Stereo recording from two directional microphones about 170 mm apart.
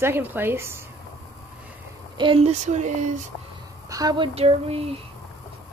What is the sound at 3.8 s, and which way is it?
Speech, 20° right (ahead or behind).